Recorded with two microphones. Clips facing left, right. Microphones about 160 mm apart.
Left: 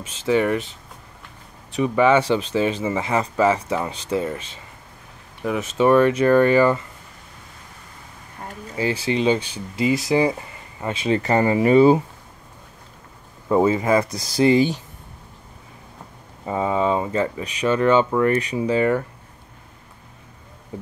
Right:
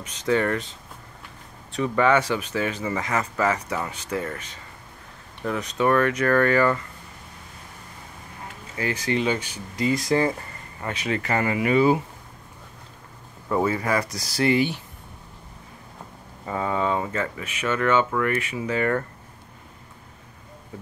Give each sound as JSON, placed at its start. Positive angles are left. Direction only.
{"t": 0.0, "sound": "speech", "side_deg": 25}
{"t": 0.3, "sound": "speech", "side_deg": 15}
{"t": 5.6, "sound": "speech", "side_deg": 20}
{"t": 8.7, "sound": "speech", "side_deg": 25}
{"t": 10.1, "sound": "speech", "side_deg": 10}
{"t": 10.8, "sound": "speech", "side_deg": 25}
{"t": 13.5, "sound": "speech", "side_deg": 20}
{"t": 16.4, "sound": "speech", "side_deg": 20}